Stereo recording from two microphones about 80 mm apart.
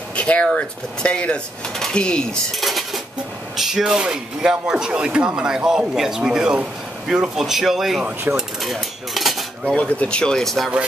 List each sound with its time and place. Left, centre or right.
0.1 s a sound: centre
0.6 s speech: centre
2.6 s dishes: centre
3.5 s speech: centre
8.4 s cutlery: centre
9.7 s speech: centre